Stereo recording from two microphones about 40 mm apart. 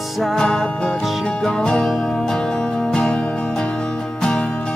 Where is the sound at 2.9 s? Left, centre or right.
Left.